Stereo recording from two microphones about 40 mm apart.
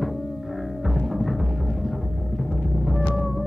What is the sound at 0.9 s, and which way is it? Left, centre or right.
Music, centre.